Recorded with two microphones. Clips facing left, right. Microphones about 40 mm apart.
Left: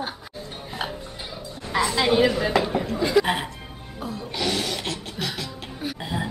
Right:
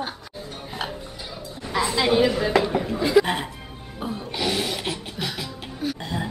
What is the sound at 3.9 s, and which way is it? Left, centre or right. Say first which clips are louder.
Music: right 2 dB; right.